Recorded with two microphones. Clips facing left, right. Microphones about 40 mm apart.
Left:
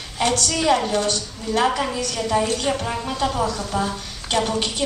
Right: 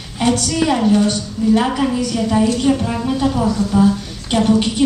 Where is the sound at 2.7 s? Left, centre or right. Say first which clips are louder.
Right 7 dB; centre.